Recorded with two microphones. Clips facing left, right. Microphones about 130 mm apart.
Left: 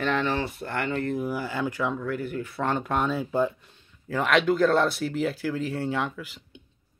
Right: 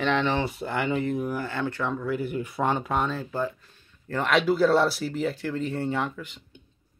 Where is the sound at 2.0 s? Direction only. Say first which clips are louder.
Right 2 dB; 10° right (ahead or behind).